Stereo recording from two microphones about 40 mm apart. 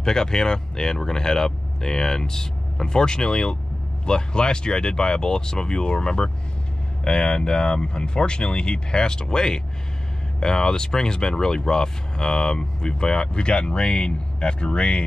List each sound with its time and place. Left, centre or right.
0.0 s speech: centre